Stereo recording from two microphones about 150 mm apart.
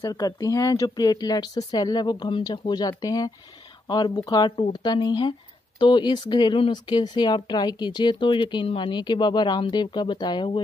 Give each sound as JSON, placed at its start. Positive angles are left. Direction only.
{"t": 0.0, "sound": "speech", "side_deg": 25}